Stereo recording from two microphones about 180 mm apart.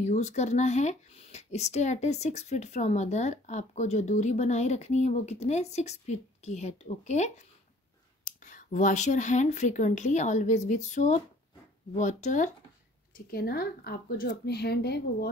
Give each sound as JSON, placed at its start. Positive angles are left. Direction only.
{"t": 0.0, "sound": "speech", "side_deg": 40}
{"t": 13.3, "sound": "speech", "side_deg": 60}